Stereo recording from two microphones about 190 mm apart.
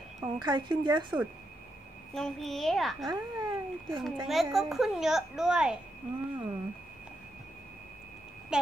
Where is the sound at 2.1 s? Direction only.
Centre (ahead or behind).